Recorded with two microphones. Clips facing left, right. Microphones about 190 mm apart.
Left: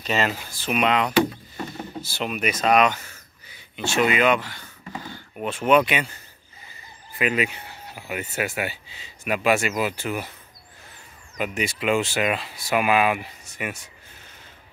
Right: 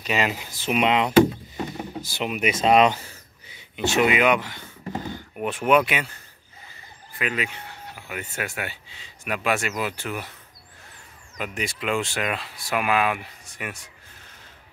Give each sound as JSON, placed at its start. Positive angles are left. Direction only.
{"t": 0.0, "sound": "speech", "side_deg": -10}
{"t": 7.2, "sound": "speech", "side_deg": 15}
{"t": 11.3, "sound": "speech", "side_deg": 5}